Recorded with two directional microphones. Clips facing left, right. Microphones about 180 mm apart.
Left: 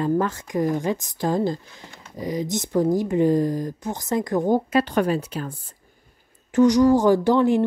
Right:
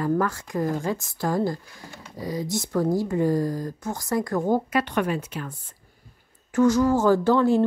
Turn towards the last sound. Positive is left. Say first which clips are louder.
# left 1 dB
turn(degrees=15)  # may be behind; listen again after turning